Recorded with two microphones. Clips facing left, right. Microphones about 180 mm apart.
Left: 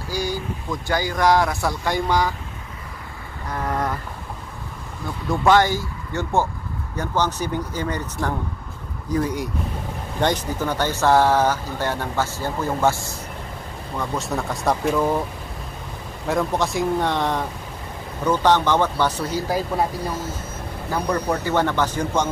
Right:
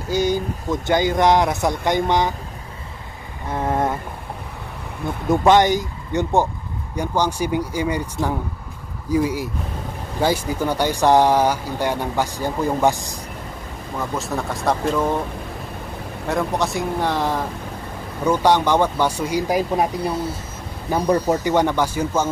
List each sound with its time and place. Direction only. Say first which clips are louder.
0.1 s speech: right 6 dB; 20° right (ahead or behind)
3.4 s a sound: right 4 dB; 25° right (ahead or behind)
5.3 s speech: right 3 dB; 20° right (ahead or behind)
13.9 s speech: right 1 dB; centre (ahead or behind)
16.3 s speech: even; centre (ahead or behind)